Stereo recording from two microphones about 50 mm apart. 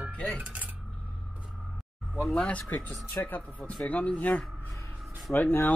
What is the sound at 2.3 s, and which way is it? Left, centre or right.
Speech, left.